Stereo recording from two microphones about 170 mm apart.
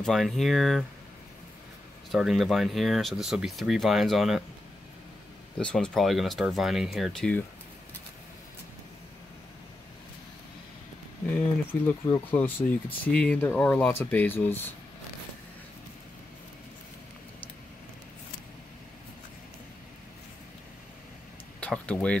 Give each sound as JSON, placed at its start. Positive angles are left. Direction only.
{"t": 0.0, "sound": "speech", "side_deg": 0}
{"t": 2.0, "sound": "speech", "side_deg": 0}
{"t": 5.6, "sound": "speech", "side_deg": 5}
{"t": 11.3, "sound": "speech", "side_deg": 10}
{"t": 21.5, "sound": "speech", "side_deg": 10}